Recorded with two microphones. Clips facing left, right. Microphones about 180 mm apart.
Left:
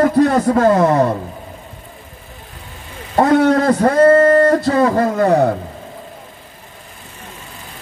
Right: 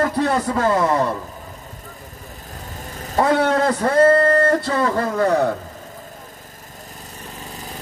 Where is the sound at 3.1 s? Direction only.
45° left (ahead or behind).